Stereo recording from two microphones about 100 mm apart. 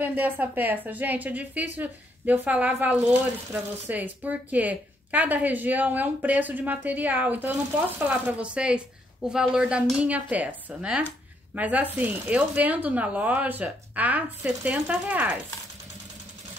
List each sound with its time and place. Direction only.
0.0 s a woman's voice: 20° right (ahead or behind)